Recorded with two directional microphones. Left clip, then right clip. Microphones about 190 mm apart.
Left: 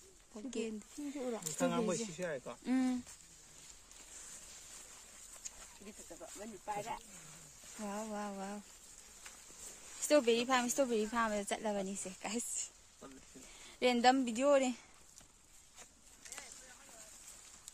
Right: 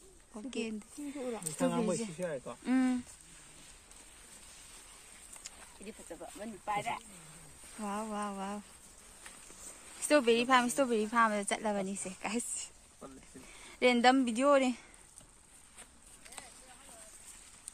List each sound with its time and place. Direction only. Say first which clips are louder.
0.3 s a sound: right 2 dB; 5° left (ahead or behind)
1.4 s speech: right 3 dB; 5° right (ahead or behind)
6.4 s speech: right 6 dB; 20° right (ahead or behind)
7.8 s speech: right 5 dB; 10° left (ahead or behind)
10.0 s speech: right 3 dB; 10° left (ahead or behind)
13.7 s speech: right 4 dB; 5° left (ahead or behind)